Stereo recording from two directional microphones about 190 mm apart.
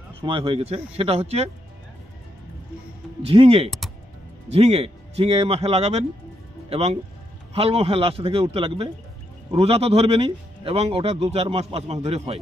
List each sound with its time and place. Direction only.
0.2 s a man's voice: 30° right (ahead or behind)
3.2 s a man's voice: 30° right (ahead or behind)